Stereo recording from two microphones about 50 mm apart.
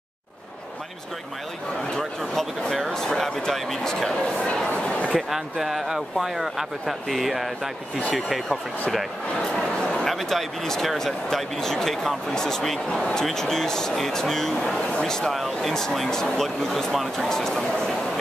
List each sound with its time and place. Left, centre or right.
2.0 s speech: centre
4.7 s a sound: left
5.3 s speech: centre
9.6 s speech: centre
15.3 s speech: centre
17.3 s speech: centre